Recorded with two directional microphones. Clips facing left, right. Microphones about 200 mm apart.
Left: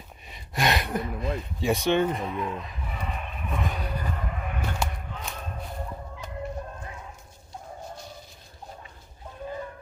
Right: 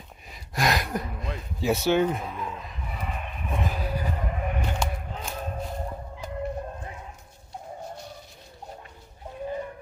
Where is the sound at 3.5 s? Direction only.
30° right (ahead or behind).